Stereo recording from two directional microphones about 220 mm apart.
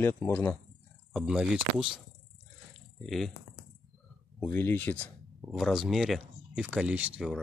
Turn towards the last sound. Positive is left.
turn(degrees=-5)  # may be behind; listen again after turning